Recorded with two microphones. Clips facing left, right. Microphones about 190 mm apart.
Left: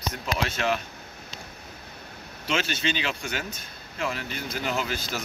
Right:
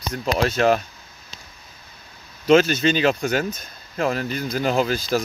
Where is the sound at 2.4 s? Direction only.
40° right (ahead or behind).